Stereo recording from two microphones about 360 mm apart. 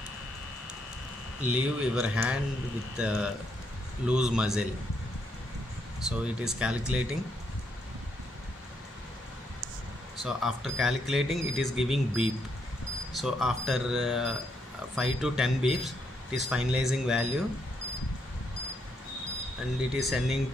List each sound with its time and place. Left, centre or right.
1.4 s a man's voice: centre
6.0 s a man's voice: centre
10.2 s a man's voice: centre
19.9 s a man's voice: centre